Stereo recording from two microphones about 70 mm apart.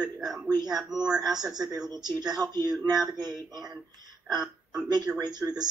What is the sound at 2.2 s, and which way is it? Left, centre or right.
Speech, right.